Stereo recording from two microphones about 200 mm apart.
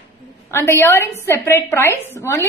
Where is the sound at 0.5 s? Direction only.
10° left (ahead or behind).